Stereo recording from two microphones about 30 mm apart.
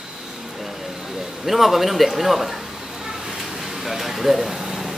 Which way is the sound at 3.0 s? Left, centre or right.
Centre.